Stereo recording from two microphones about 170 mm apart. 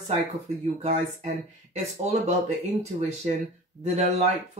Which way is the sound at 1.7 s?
40° right (ahead or behind).